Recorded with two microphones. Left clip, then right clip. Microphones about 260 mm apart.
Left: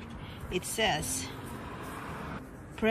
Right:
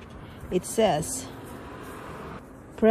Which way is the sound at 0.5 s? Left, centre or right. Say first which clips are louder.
Right 6 dB; centre.